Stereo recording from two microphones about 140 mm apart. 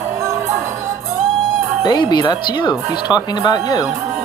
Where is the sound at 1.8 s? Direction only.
30° left (ahead or behind).